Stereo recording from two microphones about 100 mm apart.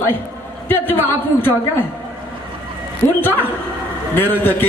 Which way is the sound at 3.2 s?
20° left (ahead or behind).